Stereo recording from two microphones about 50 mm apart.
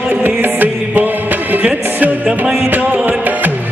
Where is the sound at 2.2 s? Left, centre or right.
Centre.